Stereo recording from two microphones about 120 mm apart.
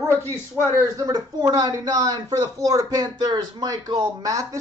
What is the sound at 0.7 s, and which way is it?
Speech, 30° right (ahead or behind).